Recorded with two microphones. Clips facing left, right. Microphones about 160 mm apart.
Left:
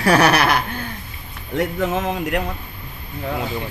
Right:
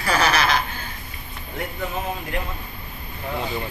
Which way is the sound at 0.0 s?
70° left (ahead or behind).